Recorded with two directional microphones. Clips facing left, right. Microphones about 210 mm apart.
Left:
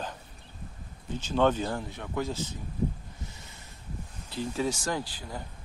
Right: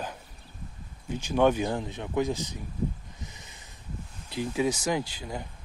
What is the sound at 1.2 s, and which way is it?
Speech, 10° right (ahead or behind).